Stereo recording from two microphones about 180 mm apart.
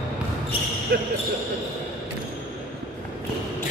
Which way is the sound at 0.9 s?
60° right (ahead or behind).